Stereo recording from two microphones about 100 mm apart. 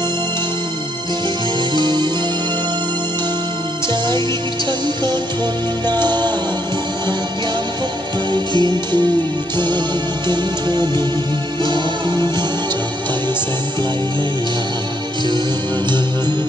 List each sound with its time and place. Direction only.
1.7 s music: 50° right (ahead or behind)
5.9 s music: 45° right (ahead or behind)
8.3 s music: 50° right (ahead or behind)
10.2 s music: 45° right (ahead or behind)